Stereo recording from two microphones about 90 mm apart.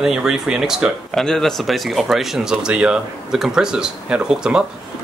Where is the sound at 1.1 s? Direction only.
5° left (ahead or behind).